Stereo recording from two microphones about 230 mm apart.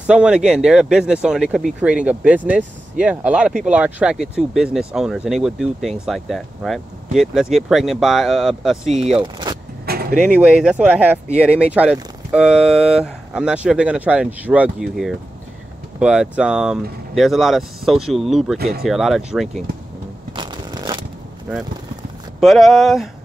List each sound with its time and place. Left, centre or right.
0.0 s speech: centre
9.9 s vehicle: right
10.2 s speech: centre
18.6 s speech: right
18.9 s speech: centre
20.3 s shuffling cards: centre
22.4 s speech: centre